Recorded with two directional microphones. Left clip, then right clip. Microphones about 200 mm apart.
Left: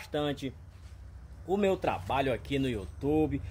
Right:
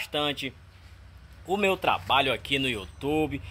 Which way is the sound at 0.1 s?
10° left (ahead or behind).